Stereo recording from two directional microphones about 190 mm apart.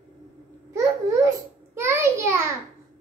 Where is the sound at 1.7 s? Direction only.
15° right (ahead or behind).